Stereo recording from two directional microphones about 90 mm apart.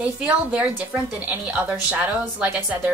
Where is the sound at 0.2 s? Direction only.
15° right (ahead or behind).